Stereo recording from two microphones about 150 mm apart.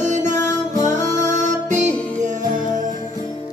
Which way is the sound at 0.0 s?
55° right (ahead or behind).